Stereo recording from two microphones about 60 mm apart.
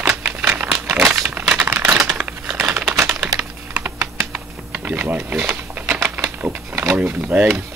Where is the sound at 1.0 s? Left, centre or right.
Right.